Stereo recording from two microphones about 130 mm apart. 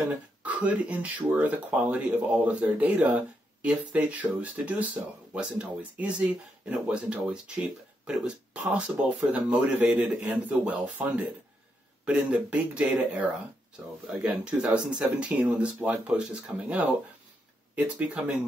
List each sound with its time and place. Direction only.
0.4 s speech: 10° right (ahead or behind)
14.2 s speech: 5° right (ahead or behind)